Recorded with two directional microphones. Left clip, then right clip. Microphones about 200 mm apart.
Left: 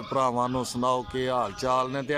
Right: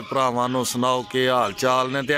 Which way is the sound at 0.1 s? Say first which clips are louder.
Right 4 dB; 5° left (ahead or behind).